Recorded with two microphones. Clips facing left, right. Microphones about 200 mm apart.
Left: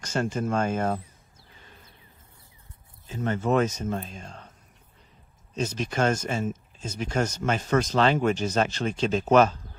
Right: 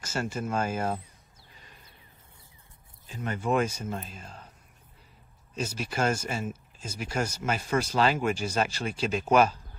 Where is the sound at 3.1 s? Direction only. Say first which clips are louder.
Left 4 dB; 45° left (ahead or behind).